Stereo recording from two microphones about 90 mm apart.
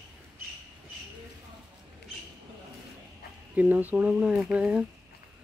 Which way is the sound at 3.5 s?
15° right (ahead or behind).